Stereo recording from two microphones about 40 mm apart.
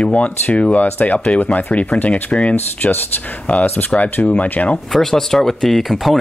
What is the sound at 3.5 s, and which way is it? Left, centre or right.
Speech, left.